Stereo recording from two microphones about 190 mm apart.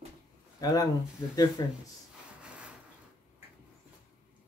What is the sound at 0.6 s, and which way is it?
Speech, 20° left (ahead or behind).